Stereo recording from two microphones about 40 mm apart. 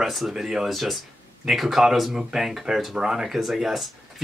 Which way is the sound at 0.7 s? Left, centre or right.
Centre.